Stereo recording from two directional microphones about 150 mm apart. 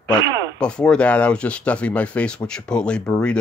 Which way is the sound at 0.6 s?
5° left (ahead or behind).